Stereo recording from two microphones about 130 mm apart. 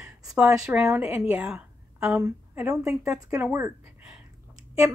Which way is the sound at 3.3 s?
10° right (ahead or behind).